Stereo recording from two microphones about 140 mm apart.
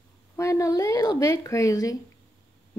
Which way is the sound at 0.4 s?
20° left (ahead or behind).